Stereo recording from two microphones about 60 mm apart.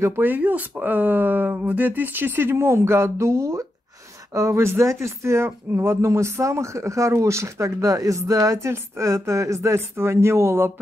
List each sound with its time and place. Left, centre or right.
0.2 s speech: right